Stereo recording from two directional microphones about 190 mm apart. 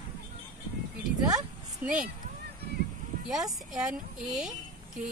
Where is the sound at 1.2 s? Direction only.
20° right (ahead or behind).